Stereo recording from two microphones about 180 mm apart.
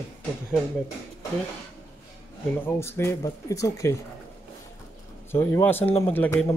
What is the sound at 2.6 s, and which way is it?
Speech, 15° left (ahead or behind).